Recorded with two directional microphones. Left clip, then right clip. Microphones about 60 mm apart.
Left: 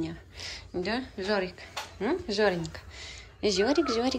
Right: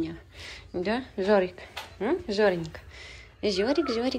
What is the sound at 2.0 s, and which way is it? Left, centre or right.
Speech, left.